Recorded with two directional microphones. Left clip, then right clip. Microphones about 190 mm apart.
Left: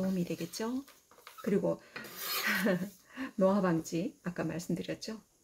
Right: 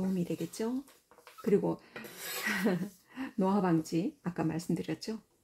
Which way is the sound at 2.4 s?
30° right (ahead or behind).